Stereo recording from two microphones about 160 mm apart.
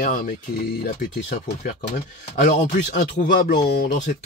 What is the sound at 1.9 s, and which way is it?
Speech, 45° left (ahead or behind).